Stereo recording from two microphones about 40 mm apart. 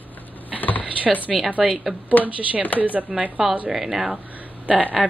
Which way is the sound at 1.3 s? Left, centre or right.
Centre.